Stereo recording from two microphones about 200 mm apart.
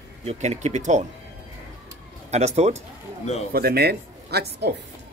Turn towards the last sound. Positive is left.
turn(degrees=-55)  # may be behind; listen again after turning